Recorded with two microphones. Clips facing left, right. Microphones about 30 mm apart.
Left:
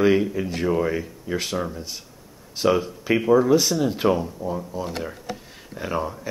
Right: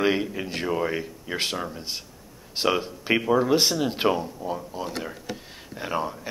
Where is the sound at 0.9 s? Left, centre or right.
Right.